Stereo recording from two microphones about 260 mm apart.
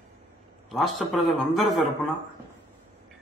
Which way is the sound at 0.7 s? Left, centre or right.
Centre.